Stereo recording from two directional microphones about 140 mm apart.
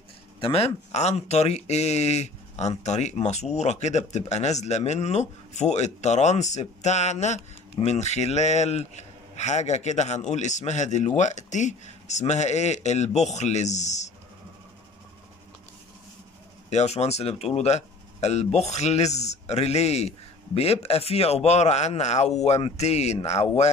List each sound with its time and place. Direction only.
0.4 s a man's voice: 45° left (ahead or behind)
16.7 s speech: 50° left (ahead or behind)